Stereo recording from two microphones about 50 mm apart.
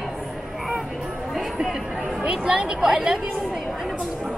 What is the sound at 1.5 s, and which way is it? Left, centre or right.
Speech, centre.